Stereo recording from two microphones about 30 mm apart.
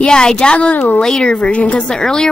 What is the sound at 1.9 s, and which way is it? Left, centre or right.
Speech, centre.